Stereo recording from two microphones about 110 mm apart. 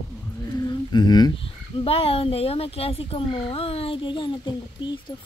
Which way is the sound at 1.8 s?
60° left (ahead or behind).